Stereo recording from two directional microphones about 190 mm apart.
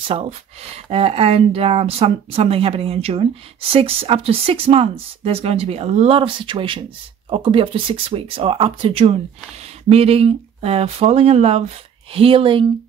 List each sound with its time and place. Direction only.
0.1 s speech: 35° right (ahead or behind)